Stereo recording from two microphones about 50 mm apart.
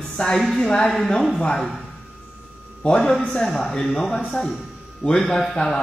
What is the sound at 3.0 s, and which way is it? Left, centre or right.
Speech, centre.